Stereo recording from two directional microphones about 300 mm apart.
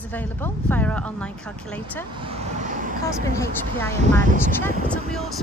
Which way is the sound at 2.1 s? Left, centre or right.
Centre.